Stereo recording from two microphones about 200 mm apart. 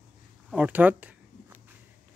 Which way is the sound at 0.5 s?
5° right (ahead or behind).